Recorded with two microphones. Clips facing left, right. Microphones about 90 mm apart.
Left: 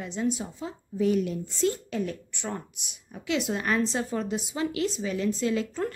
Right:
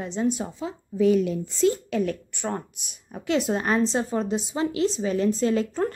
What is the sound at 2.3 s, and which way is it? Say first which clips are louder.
A woman's voice: right 5 dB; 45° right (ahead or behind).